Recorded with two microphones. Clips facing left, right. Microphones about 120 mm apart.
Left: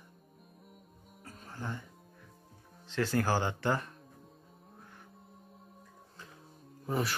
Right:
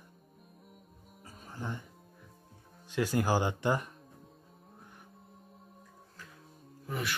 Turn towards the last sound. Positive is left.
turn(degrees=35)  # may be behind; listen again after turning